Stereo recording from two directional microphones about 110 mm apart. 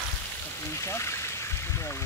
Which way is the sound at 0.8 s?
25° left (ahead or behind).